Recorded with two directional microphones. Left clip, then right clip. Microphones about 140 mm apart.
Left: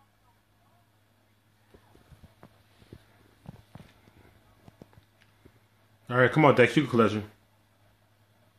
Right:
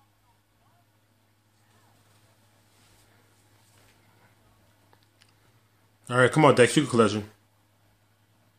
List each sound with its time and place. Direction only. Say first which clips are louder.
6.0 s speech: right 2 dB; 5° right (ahead or behind)